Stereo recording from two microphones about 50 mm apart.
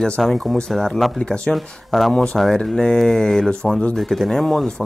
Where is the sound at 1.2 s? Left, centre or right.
Centre.